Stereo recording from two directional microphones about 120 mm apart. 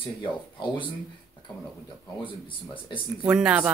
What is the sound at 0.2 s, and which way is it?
Speech, 45° left (ahead or behind).